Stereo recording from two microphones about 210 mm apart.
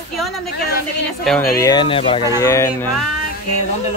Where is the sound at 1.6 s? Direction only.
20° left (ahead or behind).